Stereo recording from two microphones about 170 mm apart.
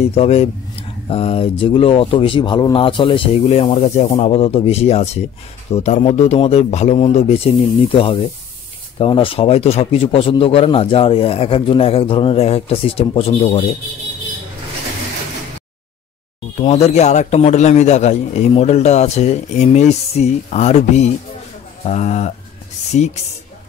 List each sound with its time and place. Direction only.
0.1 s a man's voice: 40° left (ahead or behind)
16.5 s a man's voice: 40° left (ahead or behind)